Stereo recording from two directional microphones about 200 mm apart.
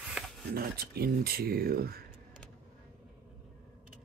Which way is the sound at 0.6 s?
50° right (ahead or behind).